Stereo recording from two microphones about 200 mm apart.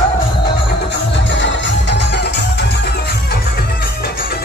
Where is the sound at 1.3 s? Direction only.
65° left (ahead or behind).